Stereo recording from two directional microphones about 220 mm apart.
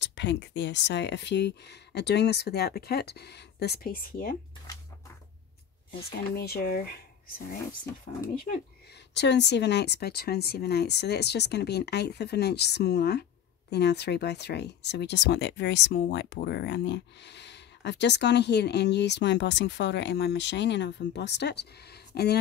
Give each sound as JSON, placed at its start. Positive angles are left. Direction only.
{"t": 0.0, "sound": "speech", "side_deg": 55}
{"t": 6.3, "sound": "speech", "side_deg": 45}
{"t": 9.1, "sound": "speech", "side_deg": 50}